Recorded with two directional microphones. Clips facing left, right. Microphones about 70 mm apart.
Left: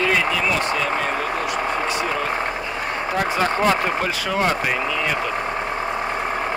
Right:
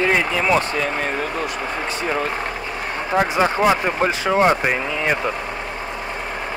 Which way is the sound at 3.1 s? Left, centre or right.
Centre.